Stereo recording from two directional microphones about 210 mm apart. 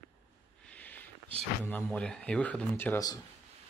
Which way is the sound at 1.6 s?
5° left (ahead or behind).